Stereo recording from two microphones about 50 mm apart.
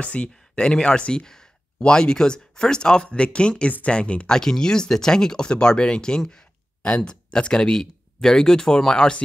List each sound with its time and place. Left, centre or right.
0.0 s speech: left